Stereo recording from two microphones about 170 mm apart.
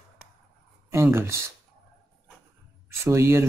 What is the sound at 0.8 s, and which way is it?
Speech, 15° right (ahead or behind).